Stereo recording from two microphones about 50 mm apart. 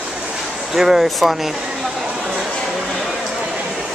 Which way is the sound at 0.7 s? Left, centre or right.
Centre.